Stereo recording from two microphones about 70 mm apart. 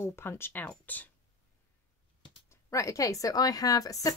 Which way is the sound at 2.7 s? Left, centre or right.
Left.